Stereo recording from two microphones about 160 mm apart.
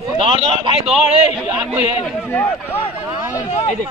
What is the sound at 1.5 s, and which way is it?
Speech, 10° right (ahead or behind).